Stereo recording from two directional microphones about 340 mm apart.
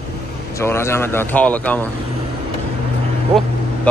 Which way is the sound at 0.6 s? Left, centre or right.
Centre.